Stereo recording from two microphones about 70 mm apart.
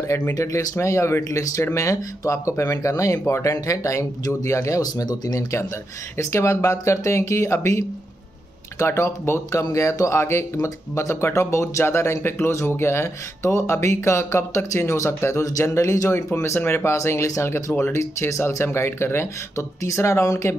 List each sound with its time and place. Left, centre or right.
0.3 s speech: left
6.1 s speech: left